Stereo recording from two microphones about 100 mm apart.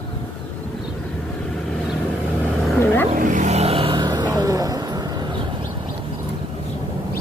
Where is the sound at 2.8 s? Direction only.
20° left (ahead or behind).